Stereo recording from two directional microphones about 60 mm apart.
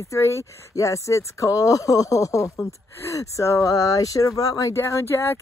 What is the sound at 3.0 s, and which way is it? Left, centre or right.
Speech, left.